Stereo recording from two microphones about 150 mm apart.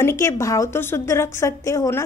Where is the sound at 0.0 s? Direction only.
20° left (ahead or behind).